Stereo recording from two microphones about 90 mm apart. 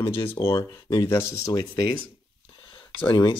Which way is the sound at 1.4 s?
40° left (ahead or behind).